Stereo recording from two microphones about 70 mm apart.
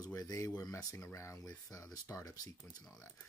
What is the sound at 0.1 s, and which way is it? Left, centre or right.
Speech, left.